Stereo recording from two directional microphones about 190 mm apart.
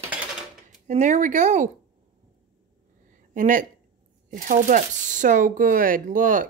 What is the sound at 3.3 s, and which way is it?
Speech, 45° right (ahead or behind).